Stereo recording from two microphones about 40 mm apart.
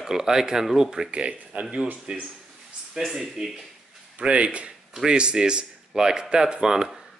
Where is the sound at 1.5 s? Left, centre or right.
Right.